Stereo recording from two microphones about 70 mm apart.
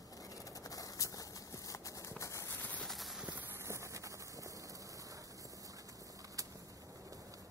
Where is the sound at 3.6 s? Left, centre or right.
Right.